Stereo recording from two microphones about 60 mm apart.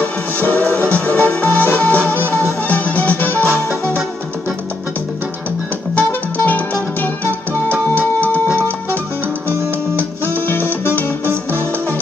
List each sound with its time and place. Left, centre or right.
0.0 s music: left
5.9 s music: left